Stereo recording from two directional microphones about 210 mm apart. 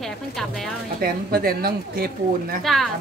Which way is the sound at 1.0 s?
45° right (ahead or behind).